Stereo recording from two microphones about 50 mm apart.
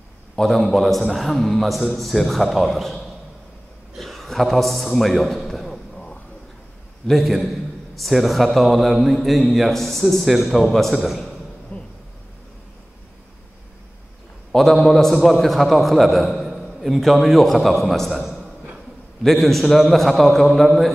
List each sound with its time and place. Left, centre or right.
0.4 s a man's voice: centre
3.9 s a sound: centre
7.1 s a man's voice: centre
11.7 s a sound: left
14.5 s a man's voice: centre
18.1 s a man's voice: centre
19.2 s a man's voice: centre